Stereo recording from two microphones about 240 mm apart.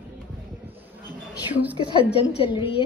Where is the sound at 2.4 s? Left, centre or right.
Left.